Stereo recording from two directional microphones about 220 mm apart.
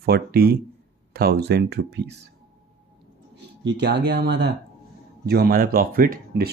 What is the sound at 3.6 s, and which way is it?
Speech, 50° right (ahead or behind).